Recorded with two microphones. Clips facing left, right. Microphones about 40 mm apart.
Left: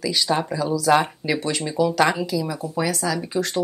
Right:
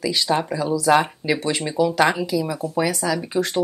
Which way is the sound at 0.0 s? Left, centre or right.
Centre.